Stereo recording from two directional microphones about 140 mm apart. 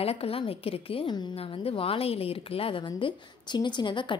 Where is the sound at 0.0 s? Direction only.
45° left (ahead or behind).